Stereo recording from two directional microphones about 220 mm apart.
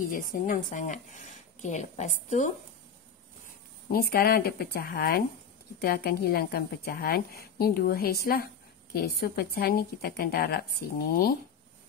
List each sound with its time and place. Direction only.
0.0 s speech: 35° left (ahead or behind)
3.9 s a woman's voice: 45° left (ahead or behind)